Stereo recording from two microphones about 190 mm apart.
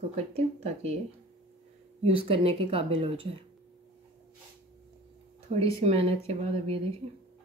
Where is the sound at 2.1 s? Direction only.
30° right (ahead or behind).